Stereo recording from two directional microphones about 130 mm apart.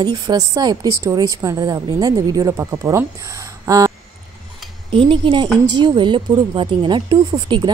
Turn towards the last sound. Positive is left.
turn(degrees=-35)  # may be behind; listen again after turning